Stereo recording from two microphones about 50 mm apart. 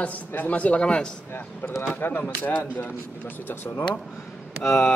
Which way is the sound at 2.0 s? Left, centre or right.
Left.